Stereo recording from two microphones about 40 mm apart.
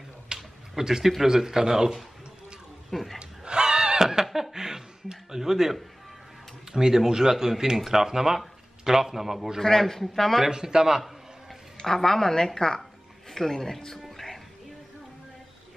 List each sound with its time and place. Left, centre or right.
0.3 s a sound: centre
0.7 s speech: centre
2.9 s speech: centre
3.2 s snicker: right
6.7 s speech: centre
9.6 s a woman's voice: centre
10.5 s speech: centre
11.8 s a woman's voice: centre
13.3 s music: centre